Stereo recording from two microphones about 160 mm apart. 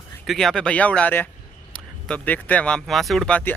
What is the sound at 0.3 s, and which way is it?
Speech, 5° left (ahead or behind).